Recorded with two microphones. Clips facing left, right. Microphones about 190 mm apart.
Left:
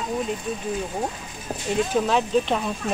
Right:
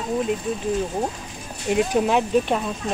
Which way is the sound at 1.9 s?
15° right (ahead or behind).